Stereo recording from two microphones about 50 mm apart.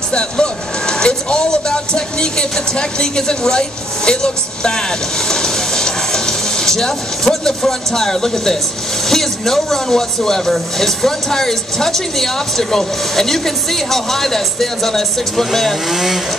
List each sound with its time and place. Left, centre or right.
0.1 s speech: centre
5.3 s a sound: centre
9.1 s speech: centre